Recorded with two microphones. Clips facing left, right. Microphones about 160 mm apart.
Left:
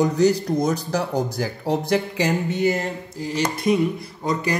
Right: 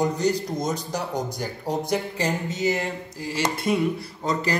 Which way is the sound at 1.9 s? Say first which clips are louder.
Left 5 dB; 70° left (ahead or behind).